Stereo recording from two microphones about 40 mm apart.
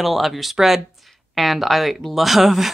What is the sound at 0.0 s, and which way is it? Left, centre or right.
Speech, centre.